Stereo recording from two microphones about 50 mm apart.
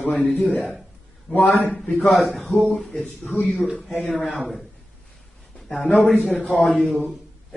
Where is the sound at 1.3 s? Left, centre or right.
Left.